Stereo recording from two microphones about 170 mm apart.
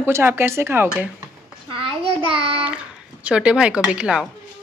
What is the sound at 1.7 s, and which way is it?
A child's voice, 30° right (ahead or behind).